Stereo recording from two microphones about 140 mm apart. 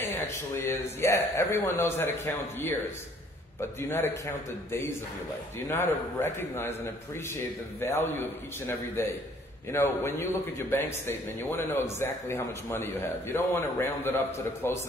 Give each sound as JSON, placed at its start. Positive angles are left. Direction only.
{"t": 0.6, "sound": "a man's voice", "side_deg": 20}
{"t": 3.9, "sound": "a man's voice", "side_deg": 15}